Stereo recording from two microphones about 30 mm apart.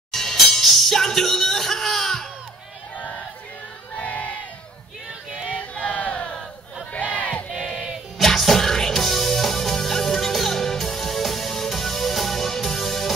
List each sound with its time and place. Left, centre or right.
0.1 s music: centre
3.0 s music: left
3.9 s a sound: left
5.5 s a sound: left
5.9 s crowd: left
7.5 s battle cry: centre
8.2 s music: centre